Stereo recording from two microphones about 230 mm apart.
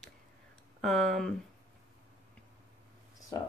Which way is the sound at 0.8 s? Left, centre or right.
Centre.